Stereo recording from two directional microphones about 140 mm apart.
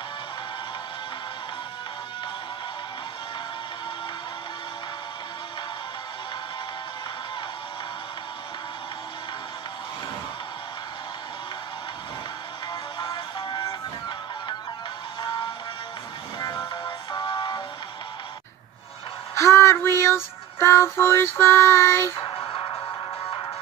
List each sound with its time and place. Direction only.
13.0 s music: 35° left (ahead or behind)
16.3 s music: 30° left (ahead or behind)
19.3 s child singing: 20° left (ahead or behind)
22.2 s music: 35° left (ahead or behind)